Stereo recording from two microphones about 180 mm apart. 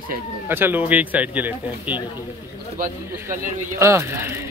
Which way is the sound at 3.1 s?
15° right (ahead or behind).